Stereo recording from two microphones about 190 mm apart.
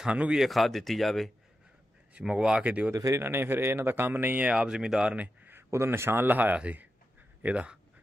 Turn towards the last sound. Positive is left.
turn(degrees=-5)  # may be behind; listen again after turning